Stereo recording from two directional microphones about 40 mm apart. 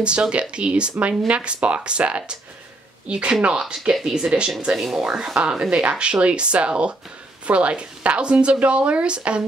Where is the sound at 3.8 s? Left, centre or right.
Centre.